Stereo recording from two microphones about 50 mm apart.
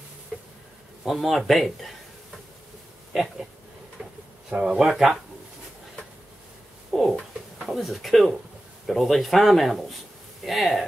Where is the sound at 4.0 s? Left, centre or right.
Right.